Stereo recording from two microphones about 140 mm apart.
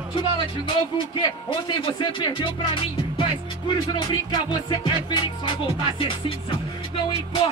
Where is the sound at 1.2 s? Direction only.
35° left (ahead or behind).